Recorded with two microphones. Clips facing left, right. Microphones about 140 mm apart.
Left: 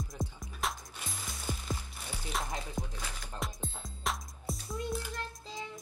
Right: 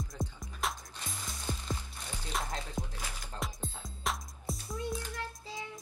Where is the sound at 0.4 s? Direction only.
Centre (ahead or behind).